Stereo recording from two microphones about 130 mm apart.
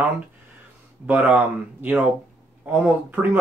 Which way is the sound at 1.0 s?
10° right (ahead or behind).